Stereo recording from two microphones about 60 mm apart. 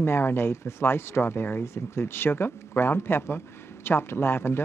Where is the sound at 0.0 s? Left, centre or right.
Left.